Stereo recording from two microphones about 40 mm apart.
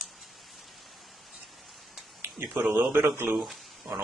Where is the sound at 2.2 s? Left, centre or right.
Right.